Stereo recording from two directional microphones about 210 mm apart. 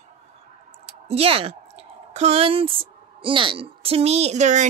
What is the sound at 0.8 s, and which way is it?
Speech, 30° right (ahead or behind).